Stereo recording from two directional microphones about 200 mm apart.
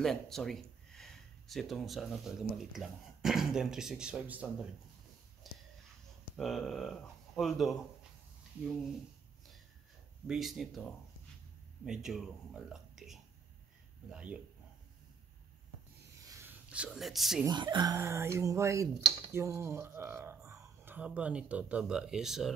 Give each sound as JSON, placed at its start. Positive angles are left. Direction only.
{"t": 0.0, "sound": "speech", "side_deg": 0}
{"t": 5.4, "sound": "a sound", "side_deg": 0}
{"t": 6.3, "sound": "speech", "side_deg": 0}
{"t": 10.2, "sound": "speech", "side_deg": 0}
{"t": 16.3, "sound": "a sound", "side_deg": -10}
{"t": 17.5, "sound": "speech", "side_deg": -20}